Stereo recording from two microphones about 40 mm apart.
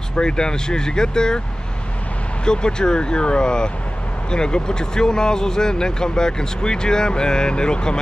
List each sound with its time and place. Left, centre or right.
0.1 s speech: left
2.4 s speech: left